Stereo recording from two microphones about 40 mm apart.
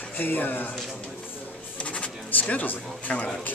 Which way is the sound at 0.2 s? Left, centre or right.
Left.